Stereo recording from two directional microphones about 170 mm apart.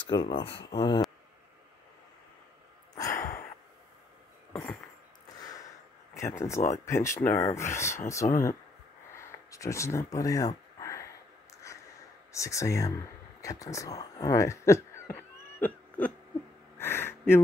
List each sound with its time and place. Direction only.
0.0 s speech: 25° left (ahead or behind)
0.4 s speech: 75° left (ahead or behind)
0.7 s speech: 25° left (ahead or behind)
2.9 s sigh: 20° left (ahead or behind)
5.4 s a sound: 20° left (ahead or behind)
6.1 s speech: 15° left (ahead or behind)
8.2 s speech: 50° left (ahead or behind)
9.1 s a sound: 15° left (ahead or behind)
12.3 s speech: 20° left (ahead or behind)
16.7 s a sound: 15° left (ahead or behind)